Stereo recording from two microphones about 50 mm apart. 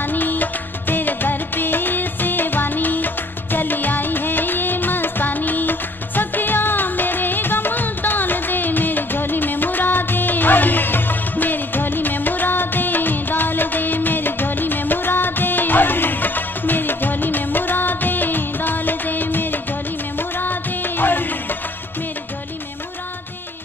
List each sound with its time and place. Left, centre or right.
0.0 s music of bollywood: left
3.5 s music: left